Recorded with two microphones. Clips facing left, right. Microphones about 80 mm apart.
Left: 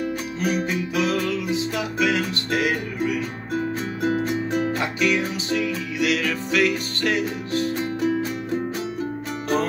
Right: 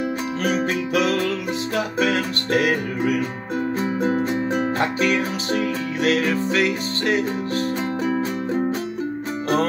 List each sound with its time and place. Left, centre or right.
0.0 s music: right